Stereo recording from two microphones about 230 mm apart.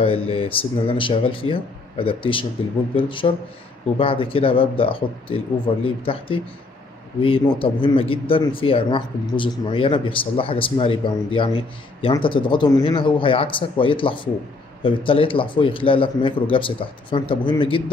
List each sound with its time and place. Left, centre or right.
0.3 s speech: left